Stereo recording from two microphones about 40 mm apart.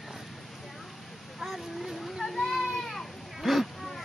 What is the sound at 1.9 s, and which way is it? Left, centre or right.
Children playing, centre.